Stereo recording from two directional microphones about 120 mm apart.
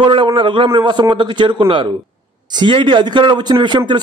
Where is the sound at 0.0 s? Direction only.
45° right (ahead or behind).